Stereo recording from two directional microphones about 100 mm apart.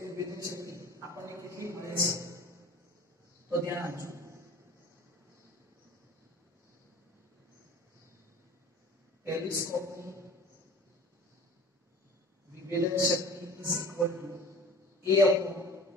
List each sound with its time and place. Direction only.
0.0 s a sound: 30° right (ahead or behind)
1.0 s a man's voice: 30° right (ahead or behind)
3.4 s a man's voice: 25° right (ahead or behind)
9.2 s a man's voice: 30° right (ahead or behind)
12.6 s a man's voice: 30° right (ahead or behind)